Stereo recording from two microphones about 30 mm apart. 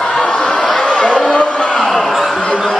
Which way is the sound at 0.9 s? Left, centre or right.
Left.